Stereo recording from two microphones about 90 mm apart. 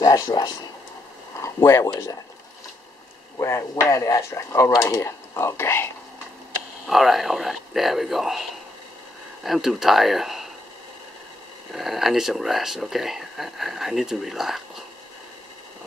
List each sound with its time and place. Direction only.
0.0 s speech: 45° left (ahead or behind)
1.4 s speech: 35° left (ahead or behind)
3.4 s speech: 35° left (ahead or behind)
6.9 s speech: centre (ahead or behind)
11.7 s speech: centre (ahead or behind)